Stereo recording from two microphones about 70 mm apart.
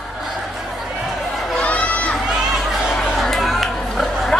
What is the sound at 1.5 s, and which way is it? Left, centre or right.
Run, centre.